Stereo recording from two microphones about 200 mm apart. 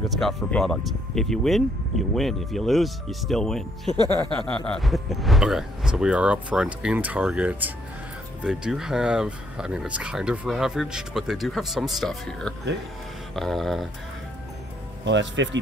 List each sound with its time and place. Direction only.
0.1 s speech: centre (ahead or behind)
3.9 s music: 20° right (ahead or behind)
4.6 s speech: centre (ahead or behind)
15.0 s speech: 65° right (ahead or behind)